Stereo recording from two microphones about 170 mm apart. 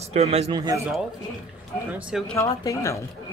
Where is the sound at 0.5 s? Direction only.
20° right (ahead or behind).